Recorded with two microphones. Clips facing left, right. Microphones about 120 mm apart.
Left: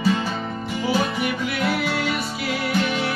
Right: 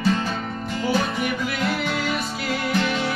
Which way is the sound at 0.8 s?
5° left (ahead or behind).